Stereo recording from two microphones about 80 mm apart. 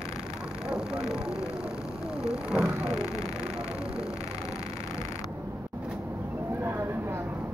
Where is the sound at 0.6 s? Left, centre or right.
Centre.